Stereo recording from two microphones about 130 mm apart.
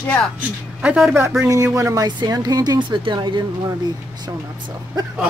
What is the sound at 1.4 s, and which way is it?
Speech, 25° right (ahead or behind).